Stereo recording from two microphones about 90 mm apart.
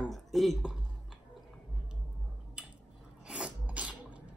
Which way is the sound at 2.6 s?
10° right (ahead or behind).